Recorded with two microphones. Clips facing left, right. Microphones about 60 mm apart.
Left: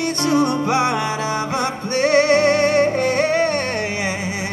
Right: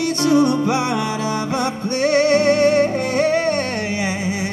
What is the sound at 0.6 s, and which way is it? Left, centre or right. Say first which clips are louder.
Music: left 1 dB; left.